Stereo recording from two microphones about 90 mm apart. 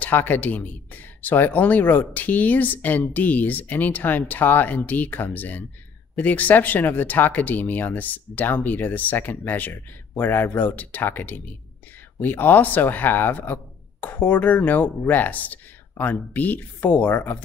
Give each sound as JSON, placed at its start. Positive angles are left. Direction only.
{"t": 0.0, "sound": "speech", "side_deg": 20}